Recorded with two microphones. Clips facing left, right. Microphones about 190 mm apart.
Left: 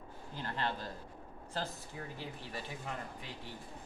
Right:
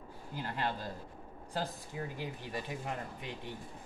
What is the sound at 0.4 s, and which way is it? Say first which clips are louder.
Speech: right 1 dB; 10° right (ahead or behind).